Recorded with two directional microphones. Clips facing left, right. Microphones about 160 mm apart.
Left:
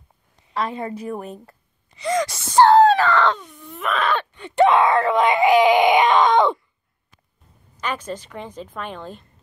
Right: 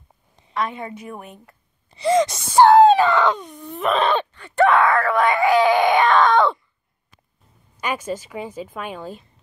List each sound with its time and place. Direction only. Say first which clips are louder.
0.5 s a woman's voice: left 1 dB; 30° left (ahead or behind)
1.9 s speech: right 5 dB; 30° right (ahead or behind)
3.7 s wail: right 3 dB; 30° right (ahead or behind)
4.3 s wail: left 5 dB; 15° left (ahead or behind)
7.8 s a woman's voice: right 2 dB; 10° right (ahead or behind)